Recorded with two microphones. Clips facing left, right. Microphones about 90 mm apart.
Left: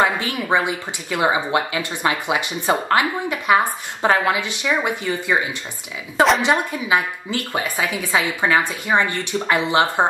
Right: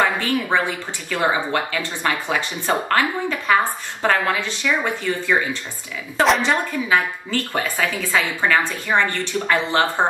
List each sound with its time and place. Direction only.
0.0 s speech: 15° left (ahead or behind)